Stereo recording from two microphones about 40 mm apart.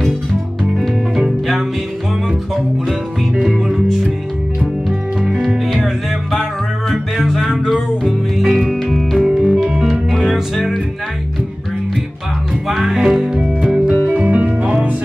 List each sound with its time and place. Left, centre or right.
0.7 s music: centre
4.8 s music: centre
6.9 s music: centre
12.6 s music: centre; by 14.9 s right